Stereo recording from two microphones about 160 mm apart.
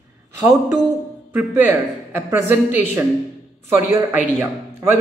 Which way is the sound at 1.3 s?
15° right (ahead or behind).